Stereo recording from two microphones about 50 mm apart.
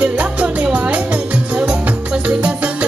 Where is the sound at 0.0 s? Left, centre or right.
Right.